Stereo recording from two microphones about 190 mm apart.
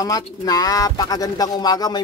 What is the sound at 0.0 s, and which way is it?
Speech, 20° left (ahead or behind).